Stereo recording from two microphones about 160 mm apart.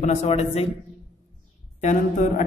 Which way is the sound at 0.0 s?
45° left (ahead or behind).